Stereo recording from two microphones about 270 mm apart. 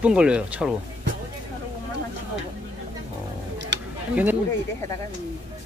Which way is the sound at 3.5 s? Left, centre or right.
Right.